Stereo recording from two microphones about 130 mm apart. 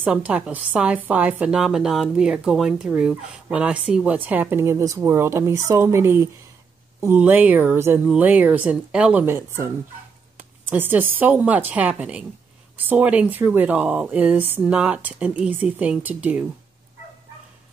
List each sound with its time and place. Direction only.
0.0 s a woman's voice: 10° right (ahead or behind)
9.2 s speech: 20° right (ahead or behind)
10.7 s a woman's voice: 15° right (ahead or behind)